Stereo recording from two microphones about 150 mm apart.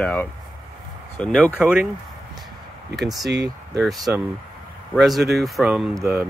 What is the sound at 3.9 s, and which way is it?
Speech, 25° right (ahead or behind).